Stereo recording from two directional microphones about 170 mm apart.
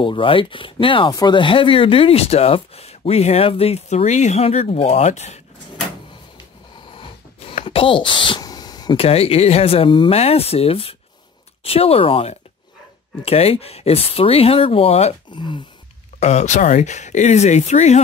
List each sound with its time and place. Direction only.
0.0 s speech: 30° left (ahead or behind)
6.9 s speech: 30° left (ahead or behind)
16.2 s speech: 40° left (ahead or behind)